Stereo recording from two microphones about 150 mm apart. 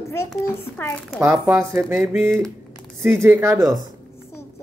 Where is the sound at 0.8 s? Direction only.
15° left (ahead or behind).